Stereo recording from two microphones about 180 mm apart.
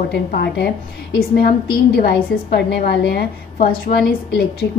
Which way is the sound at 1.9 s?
60° left (ahead or behind).